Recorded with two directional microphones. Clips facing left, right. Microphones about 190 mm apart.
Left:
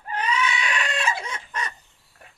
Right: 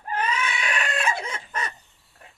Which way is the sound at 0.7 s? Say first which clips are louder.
Even; 55° right (ahead or behind).